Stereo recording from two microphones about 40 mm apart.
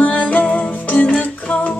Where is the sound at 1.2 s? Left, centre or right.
Left.